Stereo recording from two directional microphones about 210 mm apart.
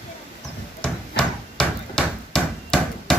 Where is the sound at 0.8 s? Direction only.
5° left (ahead or behind).